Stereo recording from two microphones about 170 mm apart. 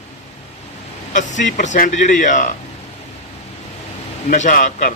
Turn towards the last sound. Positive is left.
turn(degrees=50)  # may be behind; listen again after turning